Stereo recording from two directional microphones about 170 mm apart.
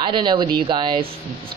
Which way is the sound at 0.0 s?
25° right (ahead or behind).